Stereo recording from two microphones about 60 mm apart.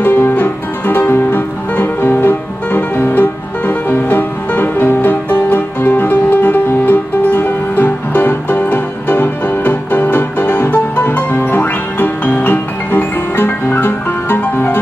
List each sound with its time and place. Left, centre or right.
0.0 s music: left